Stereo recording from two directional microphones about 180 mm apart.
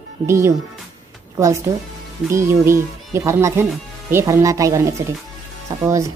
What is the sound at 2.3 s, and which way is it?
Speech, 15° right (ahead or behind).